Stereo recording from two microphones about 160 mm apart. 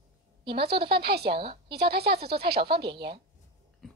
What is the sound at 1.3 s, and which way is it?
Speech, 35° right (ahead or behind).